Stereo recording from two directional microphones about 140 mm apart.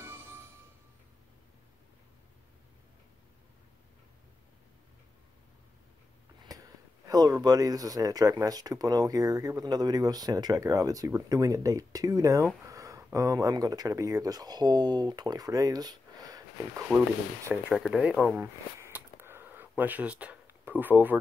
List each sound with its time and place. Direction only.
0.0 s music: 15° right (ahead or behind)
6.5 s a sound: 25° right (ahead or behind)
7.1 s speech: 25° right (ahead or behind)
17.7 s speech: 5° right (ahead or behind)